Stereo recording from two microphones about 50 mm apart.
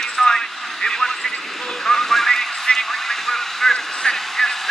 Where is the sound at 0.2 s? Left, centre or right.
Centre.